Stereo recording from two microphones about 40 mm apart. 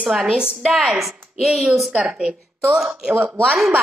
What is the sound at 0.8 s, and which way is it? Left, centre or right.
Speech, centre.